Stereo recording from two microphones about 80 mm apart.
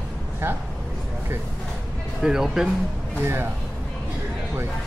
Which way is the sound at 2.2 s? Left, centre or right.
Centre.